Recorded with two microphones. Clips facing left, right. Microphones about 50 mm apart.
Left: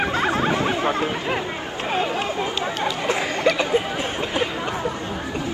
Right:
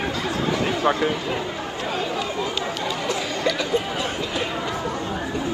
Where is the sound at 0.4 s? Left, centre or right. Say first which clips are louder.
Left 2 dB; left.